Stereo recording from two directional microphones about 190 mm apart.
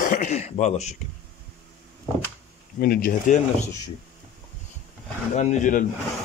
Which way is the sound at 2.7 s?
50° left (ahead or behind).